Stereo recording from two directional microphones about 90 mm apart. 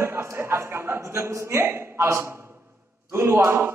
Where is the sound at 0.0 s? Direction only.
25° right (ahead or behind).